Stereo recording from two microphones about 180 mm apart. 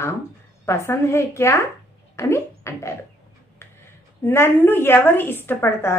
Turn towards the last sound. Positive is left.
turn(degrees=15)  # may be behind; listen again after turning